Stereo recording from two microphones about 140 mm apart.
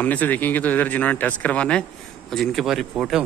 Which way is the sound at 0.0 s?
10° left (ahead or behind).